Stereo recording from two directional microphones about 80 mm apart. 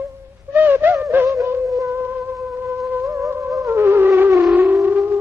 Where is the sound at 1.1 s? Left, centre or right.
Right.